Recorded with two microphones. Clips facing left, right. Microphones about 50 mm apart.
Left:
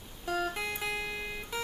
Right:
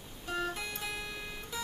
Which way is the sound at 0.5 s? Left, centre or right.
Centre.